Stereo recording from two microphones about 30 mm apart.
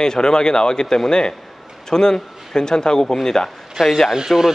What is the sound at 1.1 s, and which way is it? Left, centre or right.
Speech, left.